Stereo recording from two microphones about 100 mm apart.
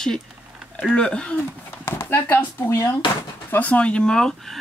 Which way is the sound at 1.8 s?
20° left (ahead or behind).